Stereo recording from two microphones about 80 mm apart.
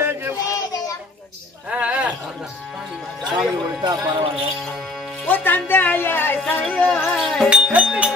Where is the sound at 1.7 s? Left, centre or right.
Centre.